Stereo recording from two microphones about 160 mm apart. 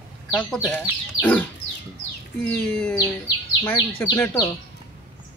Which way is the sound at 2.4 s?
5° left (ahead or behind).